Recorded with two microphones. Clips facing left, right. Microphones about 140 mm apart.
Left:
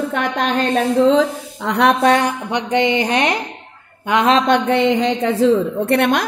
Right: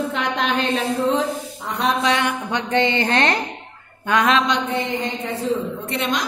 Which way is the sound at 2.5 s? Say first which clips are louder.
Left 3 dB; 15° left (ahead or behind).